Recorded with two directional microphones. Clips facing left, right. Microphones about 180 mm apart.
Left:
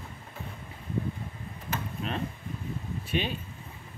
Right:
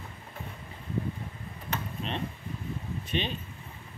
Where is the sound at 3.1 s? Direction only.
5° left (ahead or behind).